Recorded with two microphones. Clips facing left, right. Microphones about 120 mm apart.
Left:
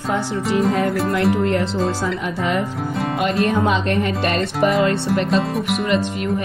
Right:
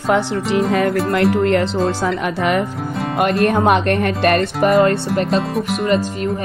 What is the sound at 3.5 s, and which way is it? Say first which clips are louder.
Speech: right 4 dB; 60° right (ahead or behind).